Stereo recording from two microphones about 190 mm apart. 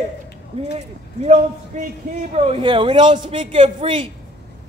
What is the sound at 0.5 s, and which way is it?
A man's voice, 30° right (ahead or behind).